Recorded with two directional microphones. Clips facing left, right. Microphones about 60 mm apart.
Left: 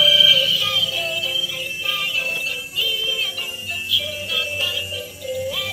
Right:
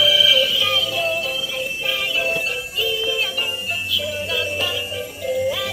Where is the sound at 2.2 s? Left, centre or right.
Right.